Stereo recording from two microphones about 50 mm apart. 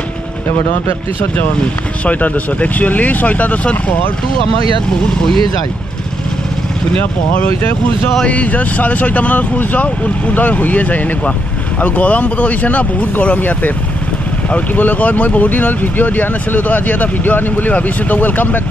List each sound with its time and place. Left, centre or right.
2.0 s speech: left
7.3 s speech: left
14.8 s speech: left